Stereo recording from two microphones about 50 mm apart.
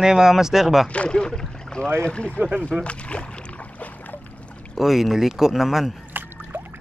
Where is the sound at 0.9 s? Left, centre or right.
Left.